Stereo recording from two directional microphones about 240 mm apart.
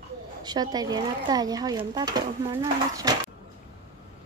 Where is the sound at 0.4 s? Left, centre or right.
Centre.